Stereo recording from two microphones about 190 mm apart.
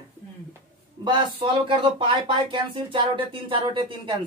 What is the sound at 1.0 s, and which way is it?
A woman's voice, 25° right (ahead or behind).